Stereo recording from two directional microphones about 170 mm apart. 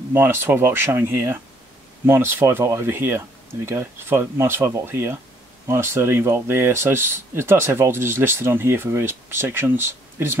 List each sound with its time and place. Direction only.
0.1 s speech: 15° right (ahead or behind)